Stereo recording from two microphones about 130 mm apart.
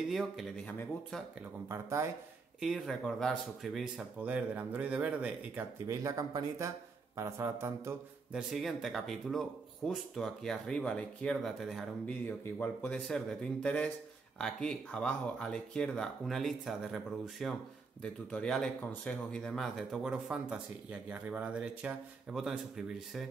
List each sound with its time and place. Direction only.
0.1 s speech: centre (ahead or behind)
1.7 s speech: 20° right (ahead or behind)
2.6 s speech: centre (ahead or behind)
5.9 s speech: 25° right (ahead or behind)
8.3 s speech: 5° right (ahead or behind)
12.1 s speech: 15° left (ahead or behind); by 23.2 s 5° right (ahead or behind)